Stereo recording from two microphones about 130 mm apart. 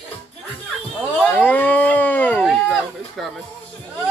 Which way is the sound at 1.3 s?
15° left (ahead or behind).